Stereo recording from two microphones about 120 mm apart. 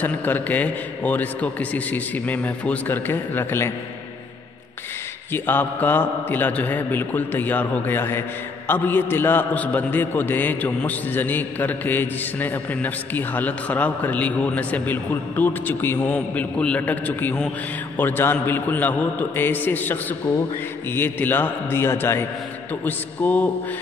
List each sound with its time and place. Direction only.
0.0 s a man's voice: 15° left (ahead or behind)
5.3 s a man's voice: 15° left (ahead or behind)